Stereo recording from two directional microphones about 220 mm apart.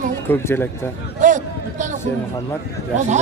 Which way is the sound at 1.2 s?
35° right (ahead or behind).